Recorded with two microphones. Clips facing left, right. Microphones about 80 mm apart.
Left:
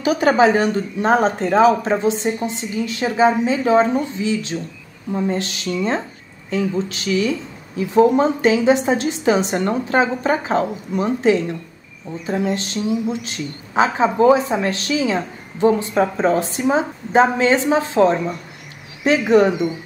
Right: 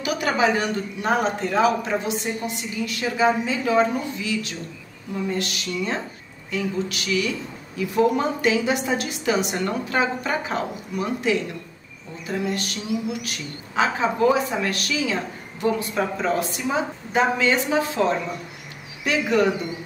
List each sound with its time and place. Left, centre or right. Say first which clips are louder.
0.0 s speech: left 7 dB; left